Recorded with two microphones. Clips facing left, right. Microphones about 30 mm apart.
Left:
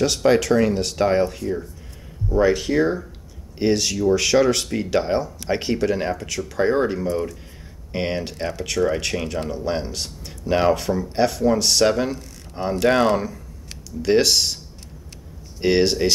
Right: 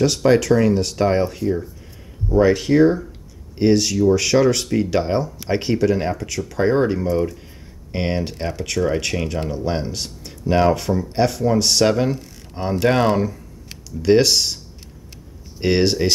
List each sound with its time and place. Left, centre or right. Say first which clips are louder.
0.0 s speech: right 2 dB; centre
15.6 s speech: even; centre